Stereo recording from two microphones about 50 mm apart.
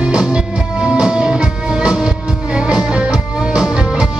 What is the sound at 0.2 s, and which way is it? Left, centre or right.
Music, centre.